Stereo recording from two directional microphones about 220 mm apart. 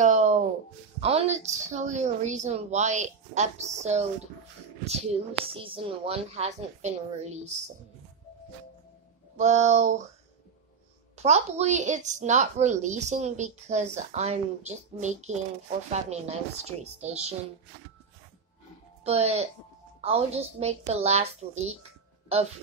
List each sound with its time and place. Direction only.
0.0 s a sound: 35° right (ahead or behind)
1.0 s a woman's voice: 30° right (ahead or behind)
9.4 s a woman's voice: 30° right (ahead or behind)
11.2 s a woman's voice: 30° right (ahead or behind)
19.0 s a woman's voice: 30° right (ahead or behind)